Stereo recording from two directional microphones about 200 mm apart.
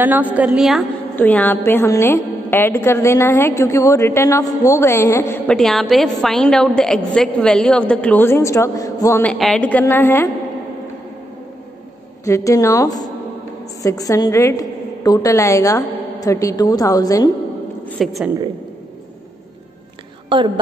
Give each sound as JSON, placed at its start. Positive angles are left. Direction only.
{"t": 0.0, "sound": "a woman's voice", "side_deg": -10}
{"t": 1.1, "sound": "a woman's voice", "side_deg": 10}
{"t": 12.3, "sound": "a woman's voice", "side_deg": 15}
{"t": 17.8, "sound": "a woman's voice", "side_deg": 0}
{"t": 20.2, "sound": "a woman's voice", "side_deg": -25}